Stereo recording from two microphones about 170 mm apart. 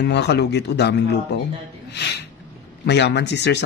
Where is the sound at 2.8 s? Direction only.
85° left.